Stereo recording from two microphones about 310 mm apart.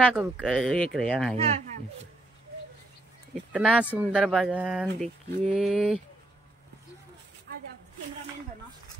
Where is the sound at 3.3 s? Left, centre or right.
Centre.